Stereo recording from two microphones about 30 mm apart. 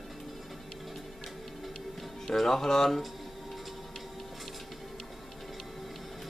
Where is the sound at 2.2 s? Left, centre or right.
Centre.